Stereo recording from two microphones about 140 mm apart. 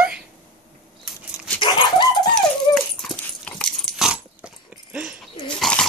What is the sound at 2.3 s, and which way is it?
Dog, 5° left (ahead or behind).